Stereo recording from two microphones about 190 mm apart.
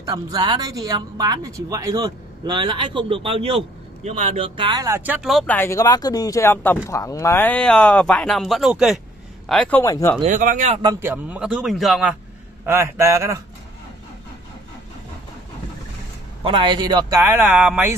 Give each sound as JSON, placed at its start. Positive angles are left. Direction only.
{"t": 0.0, "sound": "a man's voice", "side_deg": -20}
{"t": 10.2, "sound": "speech", "side_deg": -45}
{"t": 10.8, "sound": "a man's voice", "side_deg": -15}
{"t": 12.6, "sound": "speech", "side_deg": -15}
{"t": 16.4, "sound": "speech", "side_deg": -25}